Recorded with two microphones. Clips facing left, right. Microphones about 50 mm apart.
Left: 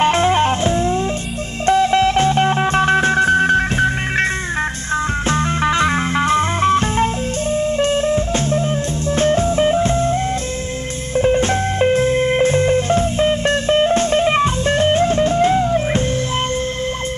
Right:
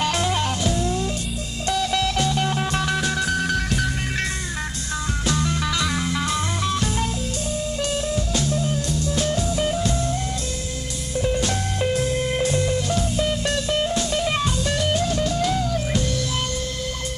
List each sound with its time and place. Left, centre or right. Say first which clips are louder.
0.0 s music: left 8 dB; left
5.3 s music: left 7 dB; left
11.1 s music: left 8 dB; left